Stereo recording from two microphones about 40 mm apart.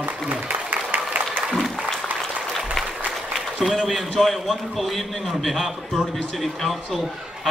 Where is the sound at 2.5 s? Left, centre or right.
Centre.